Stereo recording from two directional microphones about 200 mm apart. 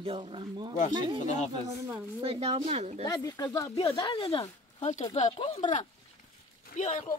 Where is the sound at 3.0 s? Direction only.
20° left (ahead or behind).